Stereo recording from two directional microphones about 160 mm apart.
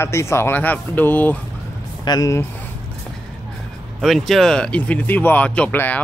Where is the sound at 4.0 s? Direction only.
Centre (ahead or behind).